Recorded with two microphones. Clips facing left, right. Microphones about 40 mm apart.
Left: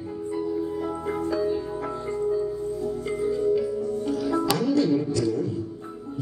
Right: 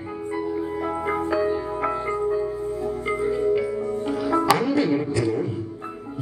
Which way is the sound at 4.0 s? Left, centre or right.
Right.